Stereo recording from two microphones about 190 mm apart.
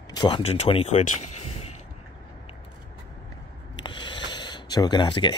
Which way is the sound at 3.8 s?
25° left (ahead or behind).